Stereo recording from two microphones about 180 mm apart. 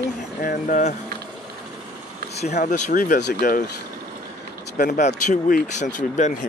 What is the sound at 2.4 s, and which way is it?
Speech, 40° left (ahead or behind).